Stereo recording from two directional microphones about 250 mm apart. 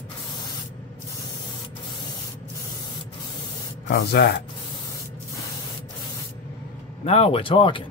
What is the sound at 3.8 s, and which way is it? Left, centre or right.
Speech, left.